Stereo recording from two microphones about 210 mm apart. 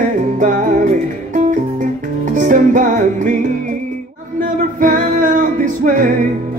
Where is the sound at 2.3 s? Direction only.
35° right (ahead or behind).